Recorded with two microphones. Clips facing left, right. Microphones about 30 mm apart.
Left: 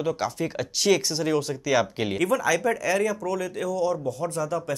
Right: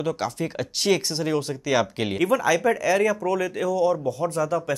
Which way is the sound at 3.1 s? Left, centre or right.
Right.